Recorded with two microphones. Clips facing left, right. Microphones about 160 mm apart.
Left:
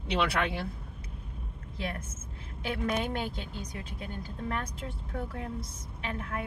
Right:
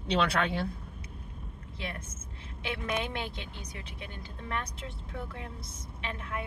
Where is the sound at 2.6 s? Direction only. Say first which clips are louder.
Left 3 dB; 40° left (ahead or behind).